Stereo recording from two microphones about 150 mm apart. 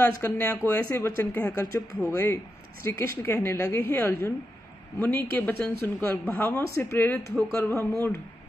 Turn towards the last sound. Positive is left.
turn(degrees=15)  # may be behind; listen again after turning